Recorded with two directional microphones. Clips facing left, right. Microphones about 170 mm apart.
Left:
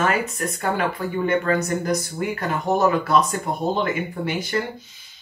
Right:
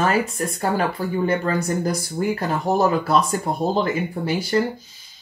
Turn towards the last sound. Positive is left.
turn(degrees=-35)  # may be behind; listen again after turning